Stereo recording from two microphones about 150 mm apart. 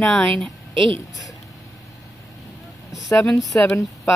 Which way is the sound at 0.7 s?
35° right (ahead or behind).